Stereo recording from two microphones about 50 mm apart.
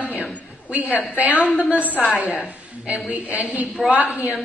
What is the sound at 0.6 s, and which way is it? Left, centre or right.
A woman's voice, right.